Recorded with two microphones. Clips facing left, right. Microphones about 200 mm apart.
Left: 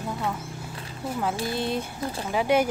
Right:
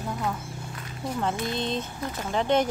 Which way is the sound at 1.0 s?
5° left (ahead or behind).